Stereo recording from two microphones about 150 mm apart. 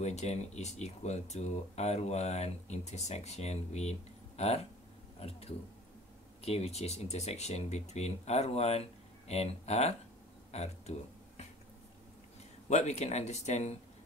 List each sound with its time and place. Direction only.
0.0 s speech: 50° left (ahead or behind)
6.4 s speech: 45° left (ahead or behind)
10.5 s a sound: 45° left (ahead or behind)
12.6 s speech: 50° left (ahead or behind)